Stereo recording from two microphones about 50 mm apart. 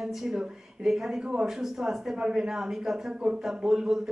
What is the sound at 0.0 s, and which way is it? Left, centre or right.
Speech, centre.